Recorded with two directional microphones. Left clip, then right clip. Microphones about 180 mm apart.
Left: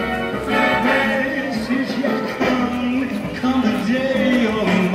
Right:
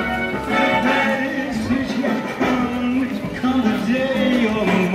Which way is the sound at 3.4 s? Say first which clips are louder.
Even; 20° left (ahead or behind).